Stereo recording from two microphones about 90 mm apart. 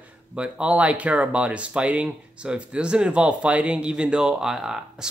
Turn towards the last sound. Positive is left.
turn(degrees=-5)  # may be behind; listen again after turning